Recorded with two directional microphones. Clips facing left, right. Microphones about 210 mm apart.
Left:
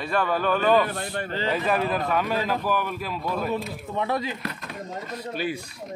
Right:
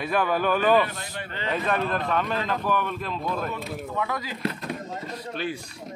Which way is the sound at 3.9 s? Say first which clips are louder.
Left 5 dB; 30° left (ahead or behind).